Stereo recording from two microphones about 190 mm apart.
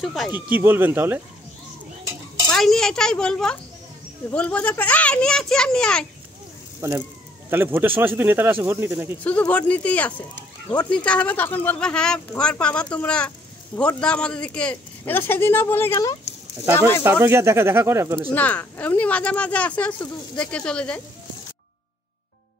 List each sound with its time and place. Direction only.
0.0 s speech: centre (ahead or behind)
2.5 s a child's voice: centre (ahead or behind)
6.8 s speech: 15° right (ahead or behind)
9.2 s speech: 10° left (ahead or behind)
17.0 s speech: 15° right (ahead or behind)
18.3 s speech: 10° left (ahead or behind)